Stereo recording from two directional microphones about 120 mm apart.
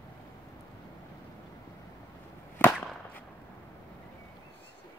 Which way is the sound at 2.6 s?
15° left (ahead or behind).